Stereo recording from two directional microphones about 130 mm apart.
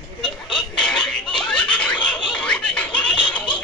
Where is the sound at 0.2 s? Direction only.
5° left (ahead or behind).